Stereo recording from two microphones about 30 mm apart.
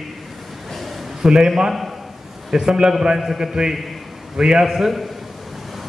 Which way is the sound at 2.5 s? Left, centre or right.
Centre.